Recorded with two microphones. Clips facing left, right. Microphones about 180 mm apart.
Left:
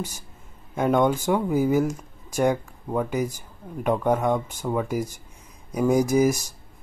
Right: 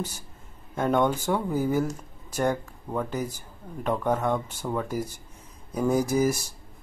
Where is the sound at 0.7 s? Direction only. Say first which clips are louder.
Left 3 dB; 10° left (ahead or behind).